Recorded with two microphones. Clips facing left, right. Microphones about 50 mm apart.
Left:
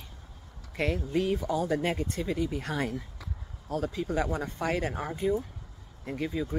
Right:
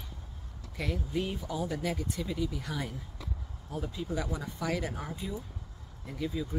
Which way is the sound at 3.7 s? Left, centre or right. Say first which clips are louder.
Left 5 dB; left.